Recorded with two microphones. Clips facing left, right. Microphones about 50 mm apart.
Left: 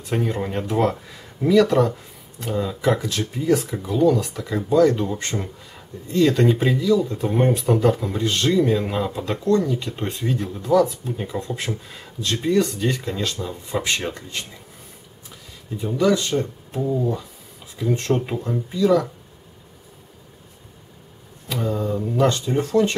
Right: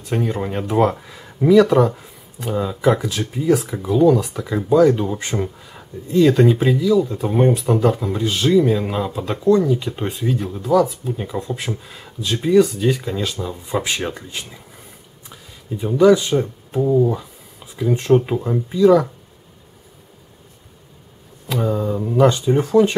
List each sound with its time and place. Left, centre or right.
0.0 s speech: centre
15.8 s speech: centre
21.5 s speech: centre